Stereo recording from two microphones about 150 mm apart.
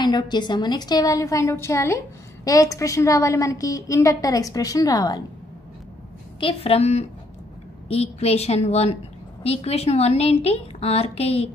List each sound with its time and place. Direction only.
0.0 s a woman's voice: 30° left (ahead or behind)
6.4 s a woman's voice: 40° left (ahead or behind)